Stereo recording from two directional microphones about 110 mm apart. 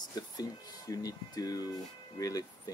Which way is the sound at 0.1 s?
35° left (ahead or behind).